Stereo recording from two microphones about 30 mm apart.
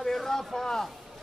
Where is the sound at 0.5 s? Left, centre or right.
Centre.